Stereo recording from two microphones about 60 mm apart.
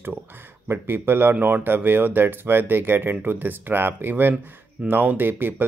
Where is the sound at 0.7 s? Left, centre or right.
Right.